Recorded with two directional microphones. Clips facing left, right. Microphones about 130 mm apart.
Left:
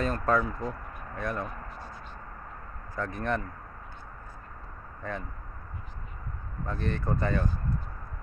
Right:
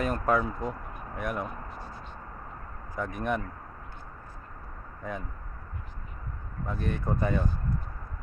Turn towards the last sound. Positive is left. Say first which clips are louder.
# right 1 dB
turn(degrees=-10)  # may be behind; listen again after turning